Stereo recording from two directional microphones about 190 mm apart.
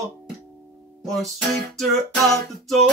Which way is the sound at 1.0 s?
Centre (ahead or behind).